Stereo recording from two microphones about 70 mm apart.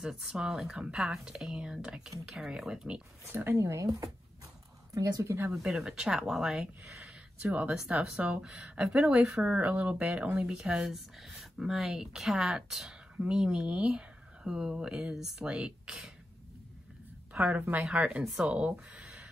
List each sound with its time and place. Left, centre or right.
0.0 s speech: centre
3.3 s speech: right
3.5 s a woman's voice: right
5.2 s speech: right
5.6 s speech: centre
7.3 s speech: centre
17.3 s a sound: centre
17.6 s speech: right